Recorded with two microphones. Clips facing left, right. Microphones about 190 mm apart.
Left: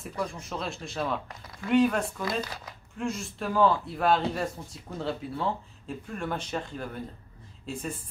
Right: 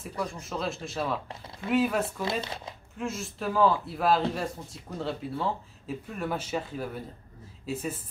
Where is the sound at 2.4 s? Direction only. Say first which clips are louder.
Right 3 dB; 25° right (ahead or behind).